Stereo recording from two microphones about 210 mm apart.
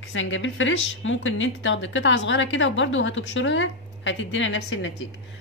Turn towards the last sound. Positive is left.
turn(degrees=65)  # may be behind; listen again after turning